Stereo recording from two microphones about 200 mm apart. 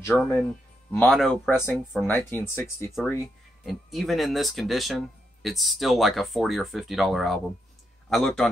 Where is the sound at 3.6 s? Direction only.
Centre (ahead or behind).